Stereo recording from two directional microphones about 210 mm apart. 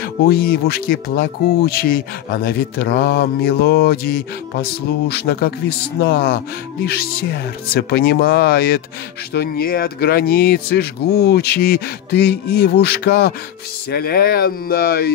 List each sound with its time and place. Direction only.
0.0 s speech: 45° left (ahead or behind)